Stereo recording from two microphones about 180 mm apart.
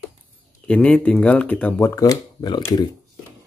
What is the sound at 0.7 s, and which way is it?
Speech, 10° left (ahead or behind).